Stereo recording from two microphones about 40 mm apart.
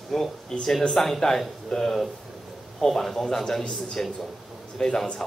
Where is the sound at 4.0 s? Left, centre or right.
Left.